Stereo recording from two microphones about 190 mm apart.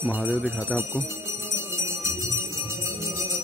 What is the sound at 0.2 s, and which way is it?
Speech, 5° left (ahead or behind).